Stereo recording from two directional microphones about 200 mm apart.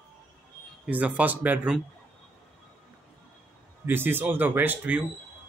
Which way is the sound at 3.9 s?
10° right (ahead or behind).